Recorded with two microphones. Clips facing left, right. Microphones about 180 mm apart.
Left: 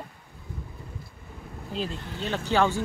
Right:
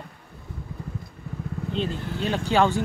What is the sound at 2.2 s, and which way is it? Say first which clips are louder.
Speech: right 3 dB; 15° right (ahead or behind).